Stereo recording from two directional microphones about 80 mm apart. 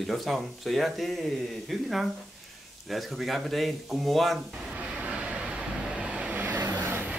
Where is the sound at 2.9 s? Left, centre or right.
Centre.